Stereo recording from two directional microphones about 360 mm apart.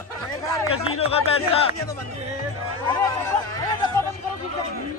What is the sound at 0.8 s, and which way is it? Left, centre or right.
Speech, centre.